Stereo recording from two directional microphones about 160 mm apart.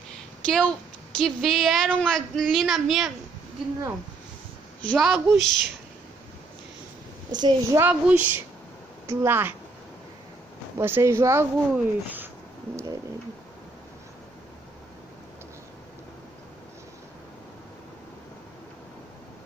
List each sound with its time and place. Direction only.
0.5 s a woman's voice: 5° left (ahead or behind)
4.8 s a woman's voice: centre (ahead or behind)
7.2 s a child's voice: 25° right (ahead or behind)
7.8 s speech: 10° right (ahead or behind)
10.8 s speech: 15° right (ahead or behind)